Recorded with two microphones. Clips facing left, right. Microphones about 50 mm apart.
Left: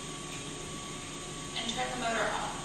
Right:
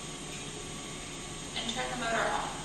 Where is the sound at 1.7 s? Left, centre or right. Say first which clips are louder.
Even; centre.